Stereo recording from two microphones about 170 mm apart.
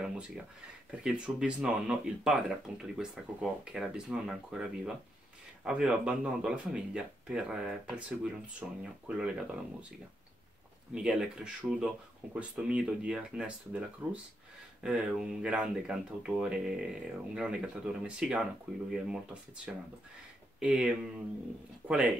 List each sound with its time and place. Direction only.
1.0 s speech: 5° right (ahead or behind)
11.0 s speech: 5° right (ahead or behind)
20.5 s speech: 5° right (ahead or behind)